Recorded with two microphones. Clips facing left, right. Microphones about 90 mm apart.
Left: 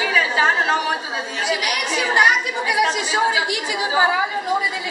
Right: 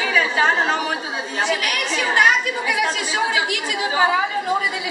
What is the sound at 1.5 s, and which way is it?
A woman's voice, 15° left (ahead or behind).